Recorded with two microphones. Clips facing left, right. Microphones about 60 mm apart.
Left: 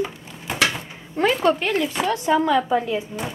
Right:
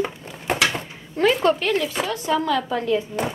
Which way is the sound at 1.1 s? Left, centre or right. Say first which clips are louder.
Right 1 dB; centre.